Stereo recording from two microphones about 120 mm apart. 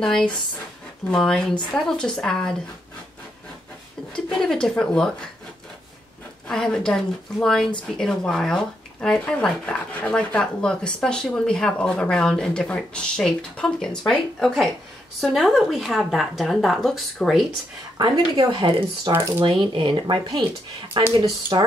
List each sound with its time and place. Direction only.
0.0 s a woman's voice: 5° left (ahead or behind)
4.1 s a woman's voice: 5° left (ahead or behind)
6.4 s a woman's voice: 5° left (ahead or behind)
17.9 s speech: 35° right (ahead or behind)